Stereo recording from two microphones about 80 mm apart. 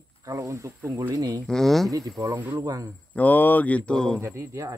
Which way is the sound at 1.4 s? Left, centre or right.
Centre.